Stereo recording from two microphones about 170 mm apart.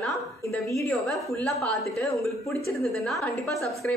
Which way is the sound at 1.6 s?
Centre (ahead or behind).